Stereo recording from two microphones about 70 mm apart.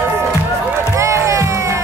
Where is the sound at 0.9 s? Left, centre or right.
Right.